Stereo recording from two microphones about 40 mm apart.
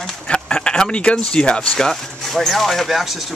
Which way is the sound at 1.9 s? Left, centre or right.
Centre.